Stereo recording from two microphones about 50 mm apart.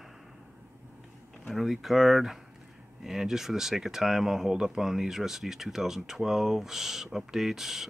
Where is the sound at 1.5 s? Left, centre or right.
Centre.